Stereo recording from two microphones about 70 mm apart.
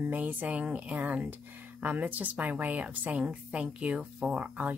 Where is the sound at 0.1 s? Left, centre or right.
Right.